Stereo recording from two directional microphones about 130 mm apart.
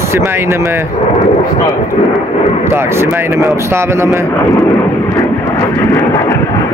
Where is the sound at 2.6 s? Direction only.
20° right (ahead or behind).